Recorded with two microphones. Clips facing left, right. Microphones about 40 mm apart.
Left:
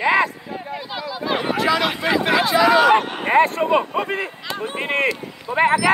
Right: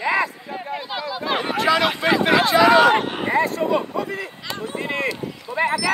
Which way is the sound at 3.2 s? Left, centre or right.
Left.